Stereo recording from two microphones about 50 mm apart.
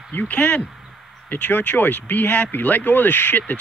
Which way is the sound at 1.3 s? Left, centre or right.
Left.